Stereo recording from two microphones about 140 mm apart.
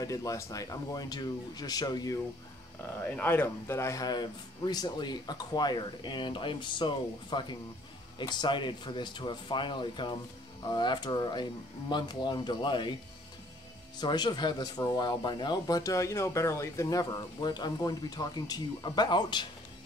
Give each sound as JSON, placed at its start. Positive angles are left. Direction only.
{"t": 0.0, "sound": "speech", "side_deg": 25}
{"t": 3.0, "sound": "speech", "side_deg": 15}
{"t": 13.9, "sound": "speech", "side_deg": 30}